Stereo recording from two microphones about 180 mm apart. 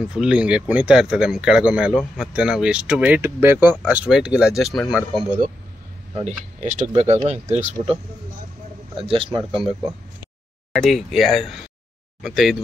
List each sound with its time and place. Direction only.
0.0 s speech: 5° right (ahead or behind)
6.1 s a man's voice: 40° right (ahead or behind)
10.7 s speech: centre (ahead or behind)